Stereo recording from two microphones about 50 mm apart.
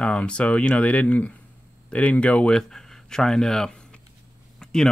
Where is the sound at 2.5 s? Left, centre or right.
Centre.